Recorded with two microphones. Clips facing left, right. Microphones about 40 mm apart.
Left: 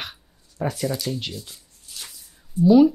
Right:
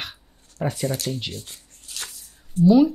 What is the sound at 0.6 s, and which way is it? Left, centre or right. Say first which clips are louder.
Speech: even; right.